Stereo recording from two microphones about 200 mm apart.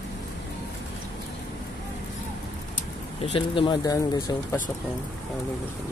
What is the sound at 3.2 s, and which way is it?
Speech, 25° left (ahead or behind).